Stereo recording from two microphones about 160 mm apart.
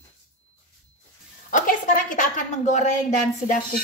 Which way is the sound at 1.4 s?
55° left (ahead or behind).